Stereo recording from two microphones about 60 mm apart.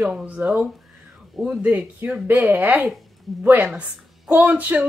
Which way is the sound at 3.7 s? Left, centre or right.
Centre.